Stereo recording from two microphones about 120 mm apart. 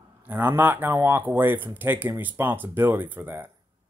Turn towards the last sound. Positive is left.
turn(degrees=-15)  # may be behind; listen again after turning